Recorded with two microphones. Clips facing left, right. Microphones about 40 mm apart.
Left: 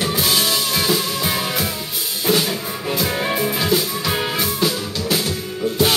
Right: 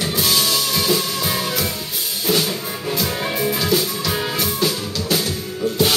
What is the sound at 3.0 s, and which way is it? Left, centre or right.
Music, centre.